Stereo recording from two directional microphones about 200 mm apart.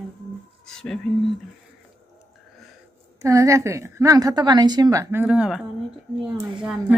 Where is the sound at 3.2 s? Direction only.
15° right (ahead or behind).